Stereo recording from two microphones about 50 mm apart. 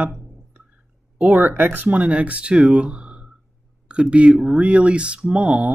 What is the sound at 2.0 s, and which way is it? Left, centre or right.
Speech, right.